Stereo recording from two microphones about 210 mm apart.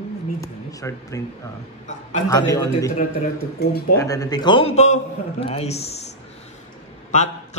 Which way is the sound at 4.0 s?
15° left (ahead or behind).